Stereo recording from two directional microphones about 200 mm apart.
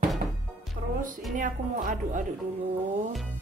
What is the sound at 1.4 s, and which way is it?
Speech, 40° right (ahead or behind).